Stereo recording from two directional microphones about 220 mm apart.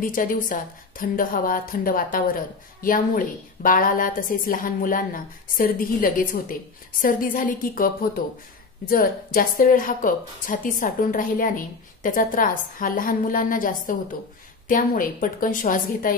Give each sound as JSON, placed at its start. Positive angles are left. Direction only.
{"t": 0.0, "sound": "a woman's voice", "side_deg": 40}